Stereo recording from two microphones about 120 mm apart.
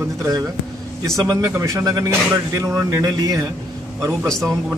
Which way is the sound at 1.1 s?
25° right (ahead or behind).